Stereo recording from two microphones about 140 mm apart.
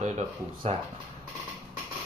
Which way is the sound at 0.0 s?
60° right (ahead or behind).